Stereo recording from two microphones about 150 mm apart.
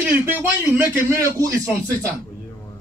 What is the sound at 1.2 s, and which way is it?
Speech, 20° right (ahead or behind).